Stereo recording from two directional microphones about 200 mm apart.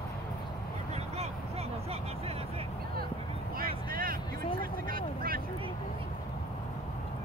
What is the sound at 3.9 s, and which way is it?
Vehicle, 45° right (ahead or behind).